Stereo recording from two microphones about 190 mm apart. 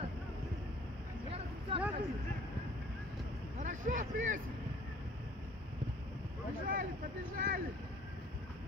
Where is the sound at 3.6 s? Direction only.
40° right (ahead or behind).